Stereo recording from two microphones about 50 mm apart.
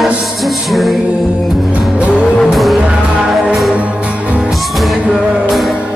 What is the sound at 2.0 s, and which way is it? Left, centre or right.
Music, right.